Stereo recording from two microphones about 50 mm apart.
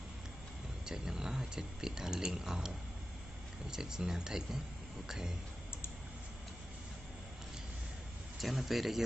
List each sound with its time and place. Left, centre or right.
0.8 s speech: centre
3.7 s speech: centre
8.4 s speech: centre